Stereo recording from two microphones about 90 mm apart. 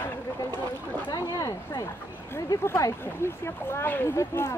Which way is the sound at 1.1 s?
45° left (ahead or behind).